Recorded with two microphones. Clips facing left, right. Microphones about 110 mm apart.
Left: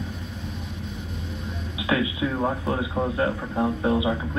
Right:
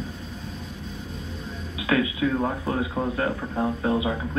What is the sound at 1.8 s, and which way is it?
Music, 25° left (ahead or behind).